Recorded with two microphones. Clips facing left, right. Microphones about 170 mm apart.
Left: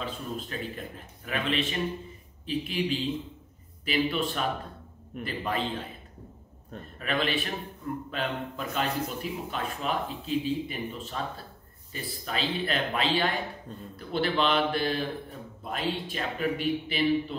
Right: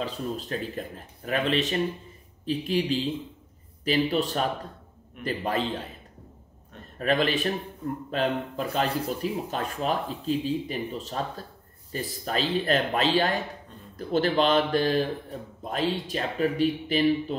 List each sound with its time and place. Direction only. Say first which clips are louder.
0.0 s speech: right 4 dB; 40° right (ahead or behind)
7.0 s speech: right 5 dB; 40° right (ahead or behind)